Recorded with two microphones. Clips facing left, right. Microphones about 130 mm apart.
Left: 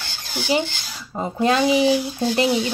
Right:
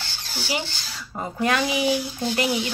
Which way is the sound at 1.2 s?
25° left (ahead or behind).